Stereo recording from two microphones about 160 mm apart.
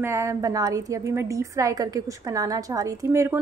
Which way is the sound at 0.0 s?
20° right (ahead or behind).